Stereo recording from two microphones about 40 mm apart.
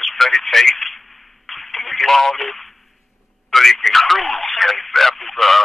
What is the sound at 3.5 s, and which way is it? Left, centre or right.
Radio, centre.